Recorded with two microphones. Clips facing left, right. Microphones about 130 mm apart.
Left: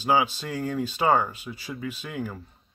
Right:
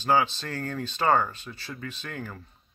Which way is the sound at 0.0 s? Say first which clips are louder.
Left 1 dB; 10° left (ahead or behind).